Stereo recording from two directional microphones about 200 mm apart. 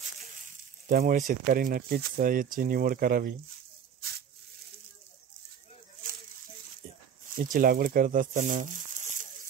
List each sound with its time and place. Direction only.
0.8 s speech: 45° right (ahead or behind)
7.3 s speech: 45° right (ahead or behind)